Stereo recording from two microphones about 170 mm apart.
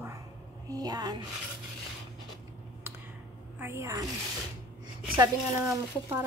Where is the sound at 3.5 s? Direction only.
15° right (ahead or behind).